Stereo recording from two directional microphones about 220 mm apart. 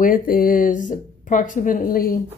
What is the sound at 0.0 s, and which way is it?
A woman's voice, 40° left (ahead or behind).